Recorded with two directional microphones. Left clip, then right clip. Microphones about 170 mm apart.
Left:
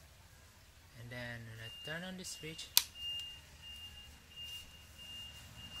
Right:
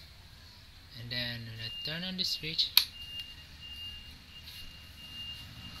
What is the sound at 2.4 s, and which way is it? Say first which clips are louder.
Speech: right 17 dB; 30° left (ahead or behind).